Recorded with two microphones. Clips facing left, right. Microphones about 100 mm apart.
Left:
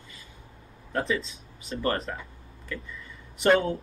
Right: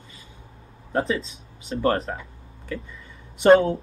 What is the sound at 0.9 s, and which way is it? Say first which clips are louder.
Speech: right 4 dB; 30° right (ahead or behind).